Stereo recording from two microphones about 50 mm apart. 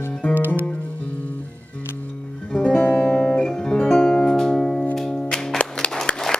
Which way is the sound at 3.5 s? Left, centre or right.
Centre.